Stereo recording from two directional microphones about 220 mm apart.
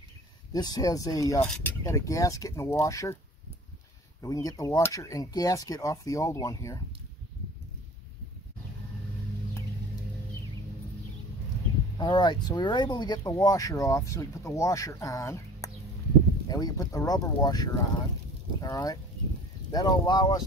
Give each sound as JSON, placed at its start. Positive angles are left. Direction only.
{"t": 0.5, "sound": "speech", "side_deg": 20}
{"t": 4.2, "sound": "speech", "side_deg": 15}
{"t": 12.0, "sound": "speech", "side_deg": 20}